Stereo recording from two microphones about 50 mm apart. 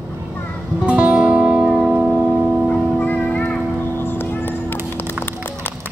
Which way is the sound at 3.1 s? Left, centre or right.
Left.